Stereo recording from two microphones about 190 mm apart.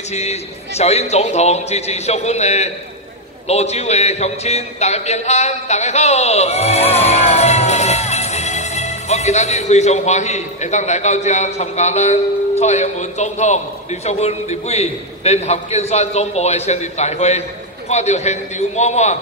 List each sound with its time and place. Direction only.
0.1 s a man's voice: 35° left (ahead or behind)